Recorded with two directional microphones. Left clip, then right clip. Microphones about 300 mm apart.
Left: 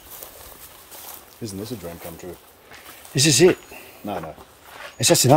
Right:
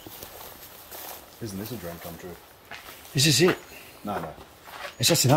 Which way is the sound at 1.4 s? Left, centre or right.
Left.